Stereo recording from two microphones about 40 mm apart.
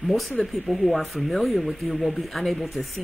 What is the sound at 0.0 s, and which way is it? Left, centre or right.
Speech, centre.